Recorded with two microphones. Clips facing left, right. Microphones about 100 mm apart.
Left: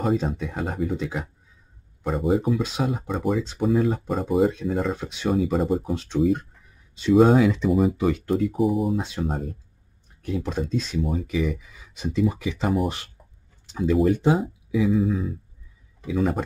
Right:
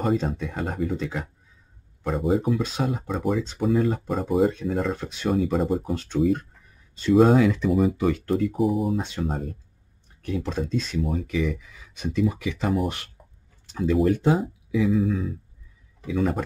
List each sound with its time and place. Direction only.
0.0 s speech: centre (ahead or behind)
12.0 s speech: 30° left (ahead or behind)
13.7 s speech: 10° left (ahead or behind)